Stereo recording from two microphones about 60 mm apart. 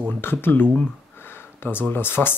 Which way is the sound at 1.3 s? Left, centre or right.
Left.